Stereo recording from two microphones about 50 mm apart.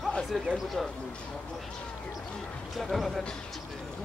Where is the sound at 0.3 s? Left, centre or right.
Centre.